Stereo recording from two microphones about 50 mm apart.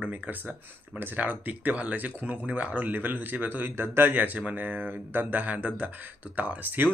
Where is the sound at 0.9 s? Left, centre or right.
Right.